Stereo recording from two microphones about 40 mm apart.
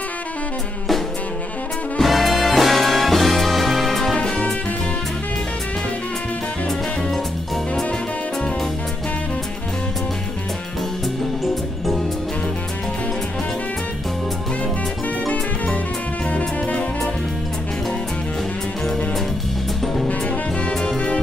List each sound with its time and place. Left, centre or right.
2.0 s music: centre
4.1 s music: left
15.2 s music: left